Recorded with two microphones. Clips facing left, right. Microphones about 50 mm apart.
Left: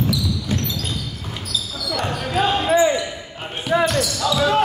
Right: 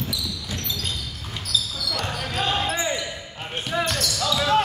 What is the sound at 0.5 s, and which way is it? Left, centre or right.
Basketball bounce, left.